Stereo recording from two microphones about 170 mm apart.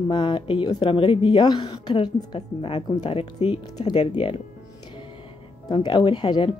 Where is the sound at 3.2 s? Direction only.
35° left (ahead or behind).